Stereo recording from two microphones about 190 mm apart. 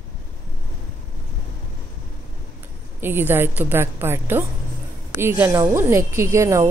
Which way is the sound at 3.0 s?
10° right (ahead or behind).